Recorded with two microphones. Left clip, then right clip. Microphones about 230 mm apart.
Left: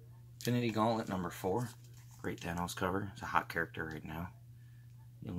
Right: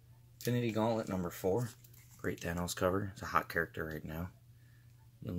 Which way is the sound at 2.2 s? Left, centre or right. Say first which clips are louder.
Right 1 dB; centre.